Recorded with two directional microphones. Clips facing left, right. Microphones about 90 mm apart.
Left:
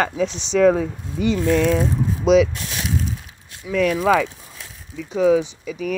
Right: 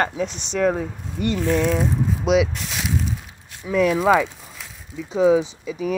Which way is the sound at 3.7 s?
25° right (ahead or behind).